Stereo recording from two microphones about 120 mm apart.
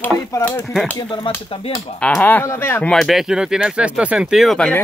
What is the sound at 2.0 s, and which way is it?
Speech, 10° left (ahead or behind).